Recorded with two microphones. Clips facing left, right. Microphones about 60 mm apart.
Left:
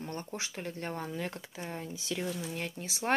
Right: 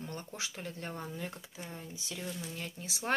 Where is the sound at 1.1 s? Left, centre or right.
Left.